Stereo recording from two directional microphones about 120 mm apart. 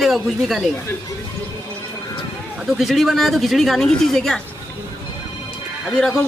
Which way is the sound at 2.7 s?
Centre (ahead or behind).